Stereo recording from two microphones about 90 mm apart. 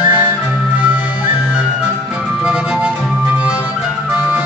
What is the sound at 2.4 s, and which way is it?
Music, 10° right (ahead or behind).